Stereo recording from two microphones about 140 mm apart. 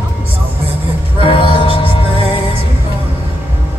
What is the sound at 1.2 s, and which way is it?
Music, 40° left (ahead or behind).